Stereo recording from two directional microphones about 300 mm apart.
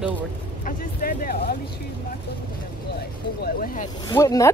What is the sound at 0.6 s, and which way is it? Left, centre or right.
Speech, left.